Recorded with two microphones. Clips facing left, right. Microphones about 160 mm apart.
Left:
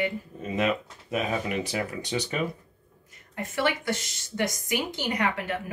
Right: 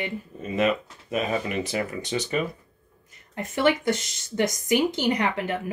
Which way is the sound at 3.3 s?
25° right (ahead or behind).